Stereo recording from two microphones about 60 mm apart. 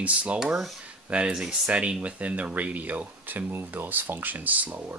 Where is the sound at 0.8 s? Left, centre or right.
Right.